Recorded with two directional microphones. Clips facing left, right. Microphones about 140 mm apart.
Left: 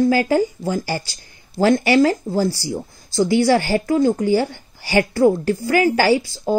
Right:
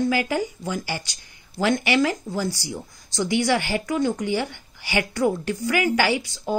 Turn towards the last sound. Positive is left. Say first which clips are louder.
# left 7 dB
turn(degrees=35)  # may be behind; listen again after turning